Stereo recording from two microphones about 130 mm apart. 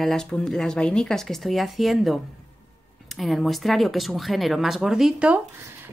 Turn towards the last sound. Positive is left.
turn(degrees=-10)  # may be behind; listen again after turning